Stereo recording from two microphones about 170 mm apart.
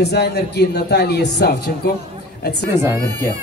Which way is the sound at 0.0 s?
75° left (ahead or behind).